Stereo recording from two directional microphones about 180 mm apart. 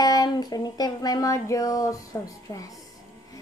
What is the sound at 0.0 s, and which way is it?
Music, 20° left (ahead or behind).